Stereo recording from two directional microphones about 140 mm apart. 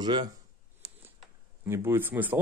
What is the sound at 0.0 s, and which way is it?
Speech, 30° right (ahead or behind).